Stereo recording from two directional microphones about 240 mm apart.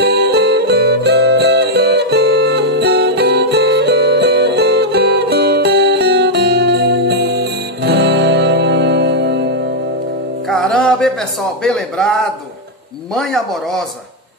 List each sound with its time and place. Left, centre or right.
0.0 s music: right
10.5 s music: centre
11.6 s a man's voice: centre